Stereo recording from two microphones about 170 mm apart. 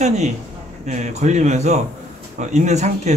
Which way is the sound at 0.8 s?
45° right (ahead or behind).